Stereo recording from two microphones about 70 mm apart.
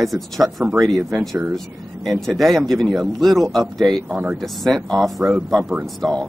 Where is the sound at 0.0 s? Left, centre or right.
Centre.